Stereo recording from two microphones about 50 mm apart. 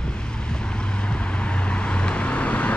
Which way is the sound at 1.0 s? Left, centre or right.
Left.